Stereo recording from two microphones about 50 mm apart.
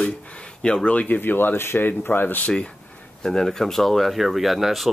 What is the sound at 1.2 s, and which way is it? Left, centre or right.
Speech, left.